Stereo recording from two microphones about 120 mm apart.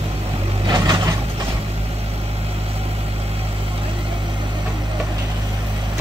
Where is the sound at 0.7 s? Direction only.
35° right (ahead or behind).